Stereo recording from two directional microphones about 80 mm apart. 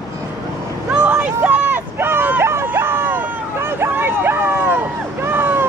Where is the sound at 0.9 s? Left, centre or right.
Centre.